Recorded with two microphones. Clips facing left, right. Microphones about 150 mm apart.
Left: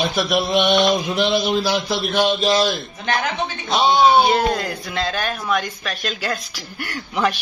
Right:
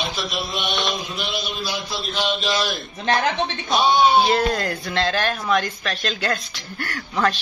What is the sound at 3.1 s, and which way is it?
Speech, 30° right (ahead or behind).